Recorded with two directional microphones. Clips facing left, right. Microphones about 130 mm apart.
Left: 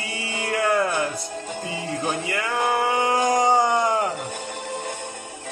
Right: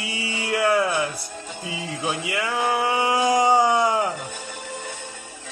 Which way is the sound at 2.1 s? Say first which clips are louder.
Right 3 dB; 10° right (ahead or behind).